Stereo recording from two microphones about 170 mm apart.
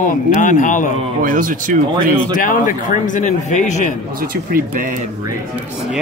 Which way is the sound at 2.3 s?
50° left (ahead or behind).